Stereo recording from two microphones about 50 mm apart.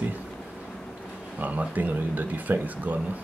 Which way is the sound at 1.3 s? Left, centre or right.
Right.